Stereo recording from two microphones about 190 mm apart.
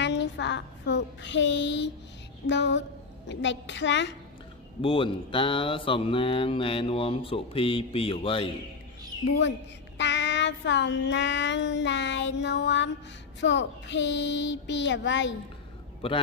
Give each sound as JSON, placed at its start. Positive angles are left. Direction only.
{"t": 0.0, "sound": "a child's voice", "side_deg": 70}
{"t": 2.4, "sound": "child singing", "side_deg": 70}
{"t": 4.8, "sound": "mantra", "side_deg": 25}
{"t": 9.9, "sound": "child singing", "side_deg": 70}
{"t": 16.0, "sound": "mantra", "side_deg": 30}